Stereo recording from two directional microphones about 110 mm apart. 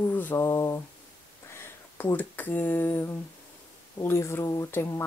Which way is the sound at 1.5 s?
20° left (ahead or behind).